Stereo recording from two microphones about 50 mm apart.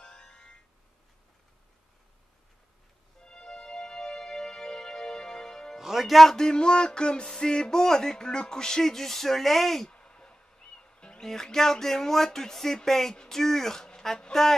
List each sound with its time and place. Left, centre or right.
0.0 s music: centre
3.2 s music: centre
5.8 s a man's voice: centre
6.3 s a sound: centre
9.8 s speech: centre